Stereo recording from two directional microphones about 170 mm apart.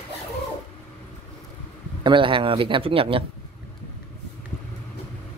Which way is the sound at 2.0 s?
30° right (ahead or behind).